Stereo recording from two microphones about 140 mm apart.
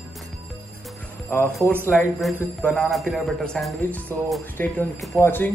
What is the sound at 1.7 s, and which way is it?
Speech, 15° right (ahead or behind).